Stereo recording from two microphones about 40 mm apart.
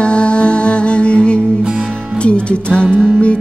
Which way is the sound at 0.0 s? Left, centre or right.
Left.